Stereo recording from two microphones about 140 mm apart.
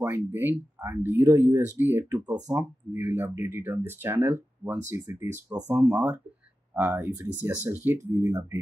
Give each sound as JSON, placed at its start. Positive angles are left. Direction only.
{"t": 0.0, "sound": "speech", "side_deg": -15}